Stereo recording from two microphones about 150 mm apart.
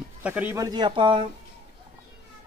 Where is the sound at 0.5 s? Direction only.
25° right (ahead or behind).